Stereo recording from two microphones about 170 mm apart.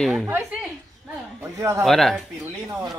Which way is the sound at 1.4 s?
15° right (ahead or behind).